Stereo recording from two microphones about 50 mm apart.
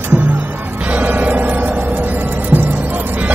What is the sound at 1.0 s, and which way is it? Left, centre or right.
Music, right.